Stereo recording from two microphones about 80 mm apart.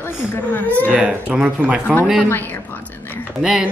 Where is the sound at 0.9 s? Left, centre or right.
Centre.